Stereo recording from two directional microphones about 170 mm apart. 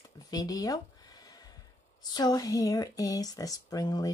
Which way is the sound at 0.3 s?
20° left (ahead or behind).